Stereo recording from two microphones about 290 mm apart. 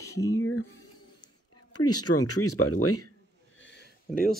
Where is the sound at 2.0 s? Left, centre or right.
Left.